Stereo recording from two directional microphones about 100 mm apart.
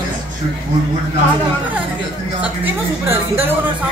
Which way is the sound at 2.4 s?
20° right (ahead or behind).